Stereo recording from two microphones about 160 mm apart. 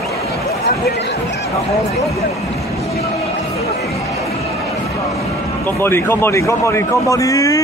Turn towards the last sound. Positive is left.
turn(degrees=20)  # may be behind; listen again after turning